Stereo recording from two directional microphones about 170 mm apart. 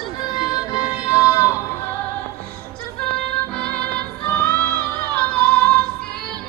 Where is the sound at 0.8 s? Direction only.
5° right (ahead or behind).